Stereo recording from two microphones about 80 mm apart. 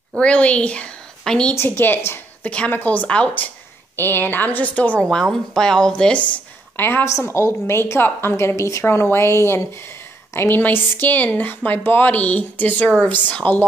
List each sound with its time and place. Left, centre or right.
0.2 s a woman's voice: centre
1.5 s a woman's voice: left
3.9 s a woman's voice: left
5.0 s speech: centre
6.8 s a woman's voice: left
7.1 s a woman's voice: left